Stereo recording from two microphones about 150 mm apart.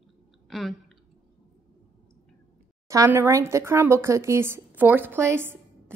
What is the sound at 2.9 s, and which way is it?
A woman's voice, 20° right (ahead or behind).